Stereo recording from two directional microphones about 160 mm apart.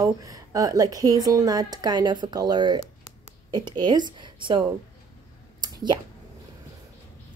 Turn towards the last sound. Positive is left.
turn(degrees=-25)  # may be behind; listen again after turning